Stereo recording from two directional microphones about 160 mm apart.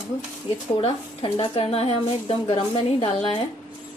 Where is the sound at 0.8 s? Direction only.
35° left (ahead or behind).